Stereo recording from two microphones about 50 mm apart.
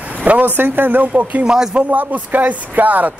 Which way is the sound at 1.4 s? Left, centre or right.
Centre.